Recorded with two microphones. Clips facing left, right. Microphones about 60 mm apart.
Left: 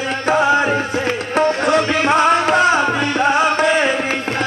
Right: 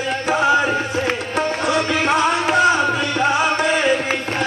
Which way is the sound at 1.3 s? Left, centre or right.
Left.